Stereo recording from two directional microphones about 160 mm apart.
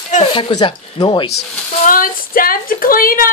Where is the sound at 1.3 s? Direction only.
75° left (ahead or behind).